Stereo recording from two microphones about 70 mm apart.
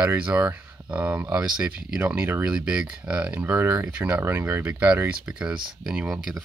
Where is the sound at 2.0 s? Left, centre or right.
Right.